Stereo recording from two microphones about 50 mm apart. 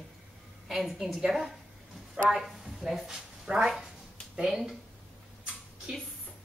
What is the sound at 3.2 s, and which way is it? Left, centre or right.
Speech, centre.